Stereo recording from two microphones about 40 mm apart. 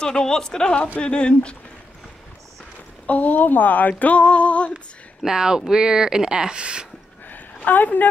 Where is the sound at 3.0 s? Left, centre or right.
Left.